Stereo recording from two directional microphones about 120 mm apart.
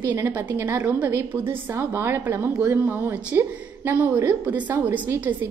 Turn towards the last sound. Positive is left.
turn(degrees=-15)  # may be behind; listen again after turning